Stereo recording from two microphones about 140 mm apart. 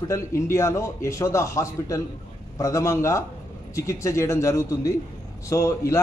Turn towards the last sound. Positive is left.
turn(degrees=20)  # may be behind; listen again after turning